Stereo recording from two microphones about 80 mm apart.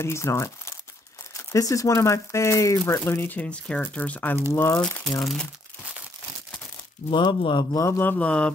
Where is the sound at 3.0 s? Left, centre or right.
Left.